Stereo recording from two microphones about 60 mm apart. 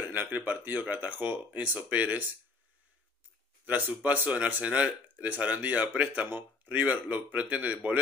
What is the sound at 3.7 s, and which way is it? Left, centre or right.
Speech, right.